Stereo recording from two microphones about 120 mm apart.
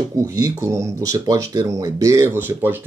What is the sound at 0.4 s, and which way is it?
Speech, 25° right (ahead or behind).